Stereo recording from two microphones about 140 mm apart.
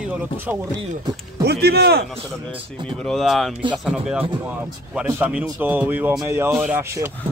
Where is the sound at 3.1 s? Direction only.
Centre (ahead or behind).